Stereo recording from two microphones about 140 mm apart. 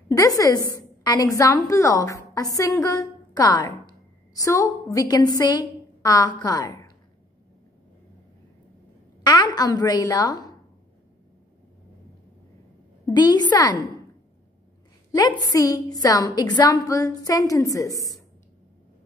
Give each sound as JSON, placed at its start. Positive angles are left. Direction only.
{"t": 0.1, "sound": "a woman's voice", "side_deg": 25}
{"t": 9.2, "sound": "a woman's voice", "side_deg": 30}
{"t": 13.0, "sound": "a woman's voice", "side_deg": 30}
{"t": 15.1, "sound": "a woman's voice", "side_deg": 25}